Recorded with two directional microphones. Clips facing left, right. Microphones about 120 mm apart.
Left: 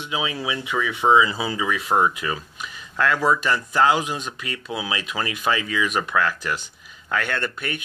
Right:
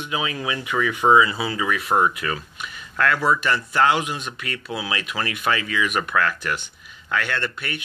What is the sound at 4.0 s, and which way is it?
Speech, 35° left (ahead or behind).